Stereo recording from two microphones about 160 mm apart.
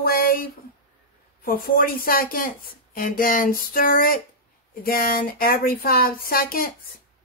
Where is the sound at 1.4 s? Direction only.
65° left (ahead or behind).